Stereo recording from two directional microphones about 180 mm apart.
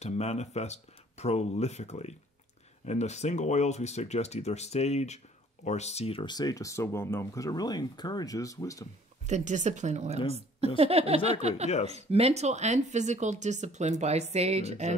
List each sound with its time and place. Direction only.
0.0 s speech: 35° left (ahead or behind); by 8.8 s 20° left (ahead or behind)
9.3 s speech: 40° right (ahead or behind)